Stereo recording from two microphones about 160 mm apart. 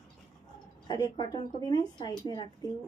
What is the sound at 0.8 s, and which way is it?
Speech, 25° left (ahead or behind).